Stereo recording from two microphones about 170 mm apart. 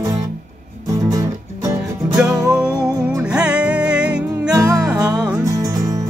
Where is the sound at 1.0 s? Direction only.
20° right (ahead or behind).